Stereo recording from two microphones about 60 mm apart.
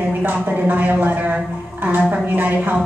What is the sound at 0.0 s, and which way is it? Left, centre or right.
A man's voice, right.